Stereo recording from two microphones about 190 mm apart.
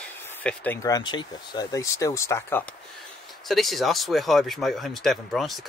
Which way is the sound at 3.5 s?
Centre (ahead or behind).